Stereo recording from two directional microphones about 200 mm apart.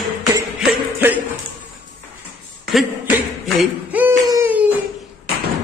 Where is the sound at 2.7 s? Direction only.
Centre (ahead or behind).